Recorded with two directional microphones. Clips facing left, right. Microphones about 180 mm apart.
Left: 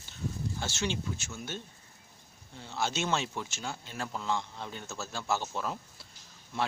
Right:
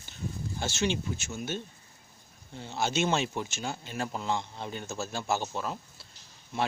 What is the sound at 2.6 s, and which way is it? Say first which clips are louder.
Speech: right 4 dB; 20° right (ahead or behind).